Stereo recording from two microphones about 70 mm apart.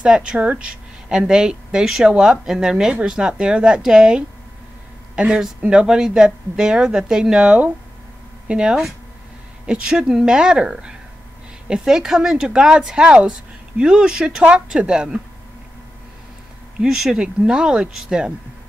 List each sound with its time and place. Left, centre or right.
0.0 s a woman's voice: centre
16.8 s a woman's voice: centre